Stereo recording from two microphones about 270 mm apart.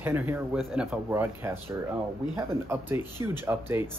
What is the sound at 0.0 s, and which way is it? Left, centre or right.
Speech, centre.